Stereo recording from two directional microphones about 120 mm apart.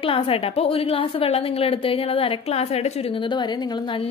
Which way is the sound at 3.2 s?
40° left (ahead or behind).